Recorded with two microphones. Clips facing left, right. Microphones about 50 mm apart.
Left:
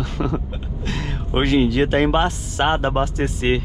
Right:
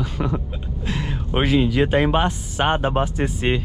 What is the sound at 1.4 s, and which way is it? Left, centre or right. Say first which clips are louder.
Speech: left 1 dB; centre.